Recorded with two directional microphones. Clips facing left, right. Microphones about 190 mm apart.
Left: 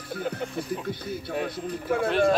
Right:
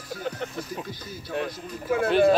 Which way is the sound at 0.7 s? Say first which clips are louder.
Left 5 dB; 60° left (ahead or behind).